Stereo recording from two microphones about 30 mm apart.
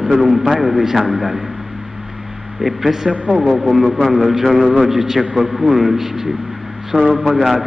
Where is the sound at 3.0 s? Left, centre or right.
Right.